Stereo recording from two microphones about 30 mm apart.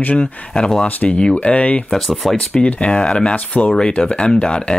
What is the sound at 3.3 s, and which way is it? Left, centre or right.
Speech, left.